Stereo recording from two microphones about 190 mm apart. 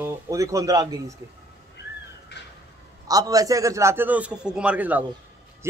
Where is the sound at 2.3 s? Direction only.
65° left (ahead or behind).